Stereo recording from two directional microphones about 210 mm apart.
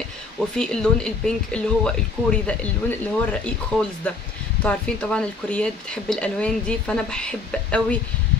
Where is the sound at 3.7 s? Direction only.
5° left (ahead or behind).